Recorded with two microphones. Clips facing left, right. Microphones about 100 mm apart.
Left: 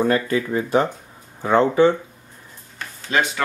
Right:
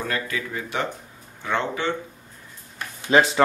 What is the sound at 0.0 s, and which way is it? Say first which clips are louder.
Speech: left 9 dB; 30° left (ahead or behind).